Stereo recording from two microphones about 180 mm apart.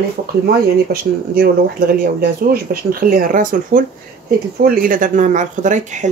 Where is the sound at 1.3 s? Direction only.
55° right (ahead or behind).